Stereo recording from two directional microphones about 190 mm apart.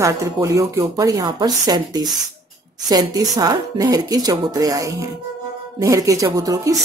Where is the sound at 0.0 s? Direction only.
15° right (ahead or behind).